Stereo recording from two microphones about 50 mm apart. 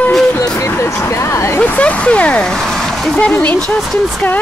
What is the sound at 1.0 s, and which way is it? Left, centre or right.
Speech, left.